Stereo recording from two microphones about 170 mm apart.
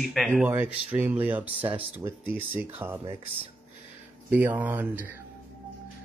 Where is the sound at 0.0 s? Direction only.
Centre (ahead or behind).